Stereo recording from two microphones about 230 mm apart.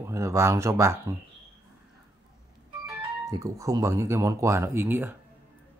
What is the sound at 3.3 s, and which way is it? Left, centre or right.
Speech, centre.